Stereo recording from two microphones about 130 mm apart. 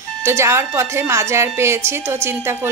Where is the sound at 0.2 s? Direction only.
20° right (ahead or behind).